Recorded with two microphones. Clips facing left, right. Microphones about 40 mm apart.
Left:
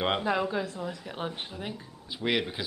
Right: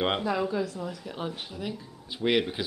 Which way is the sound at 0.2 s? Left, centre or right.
Left.